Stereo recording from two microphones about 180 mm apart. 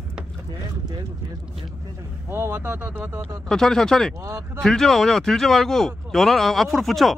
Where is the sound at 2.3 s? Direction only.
15° right (ahead or behind).